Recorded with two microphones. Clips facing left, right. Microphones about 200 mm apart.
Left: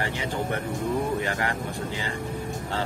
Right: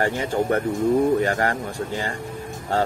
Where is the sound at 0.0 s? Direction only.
45° right (ahead or behind).